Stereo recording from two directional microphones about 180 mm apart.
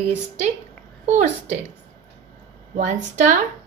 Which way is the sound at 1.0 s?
40° right (ahead or behind).